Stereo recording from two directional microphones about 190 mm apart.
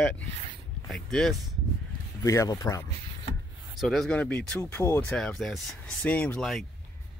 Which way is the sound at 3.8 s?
Centre (ahead or behind).